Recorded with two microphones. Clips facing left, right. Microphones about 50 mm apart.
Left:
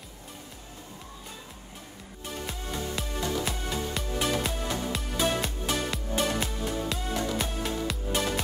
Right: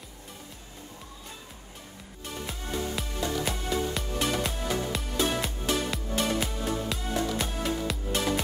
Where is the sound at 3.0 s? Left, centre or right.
Centre.